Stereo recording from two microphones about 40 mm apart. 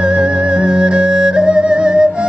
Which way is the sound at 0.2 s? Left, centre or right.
Right.